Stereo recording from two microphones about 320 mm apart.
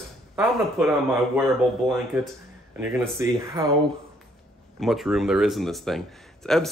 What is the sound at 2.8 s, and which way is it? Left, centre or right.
Speech, centre.